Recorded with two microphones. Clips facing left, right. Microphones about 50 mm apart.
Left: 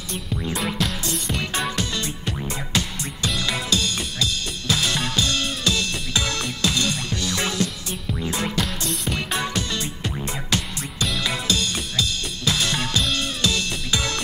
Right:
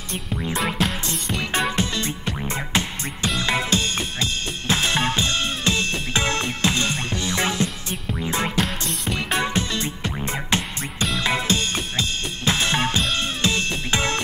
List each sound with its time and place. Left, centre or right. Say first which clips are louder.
1.0 s music: even; right
3.3 s drum kit: right 3 dB; right
8.3 s music: right 3 dB; right
11.1 s drum kit: right 3 dB; right
13.1 s music: right 1 dB; right